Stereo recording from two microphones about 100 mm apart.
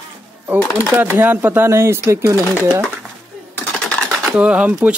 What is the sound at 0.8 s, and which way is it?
Speech, 20° right (ahead or behind).